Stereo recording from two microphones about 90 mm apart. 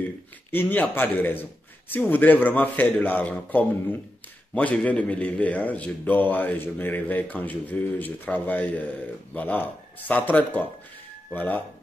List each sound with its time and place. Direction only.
0.5 s a man's voice: 20° left (ahead or behind)